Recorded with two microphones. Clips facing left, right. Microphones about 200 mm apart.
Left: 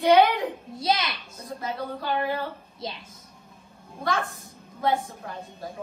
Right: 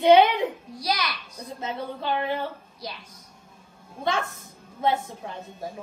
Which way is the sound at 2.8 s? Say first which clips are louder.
Left 3 dB; 25° left (ahead or behind).